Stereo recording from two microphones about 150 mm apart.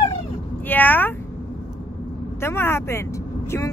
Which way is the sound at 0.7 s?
10° left (ahead or behind).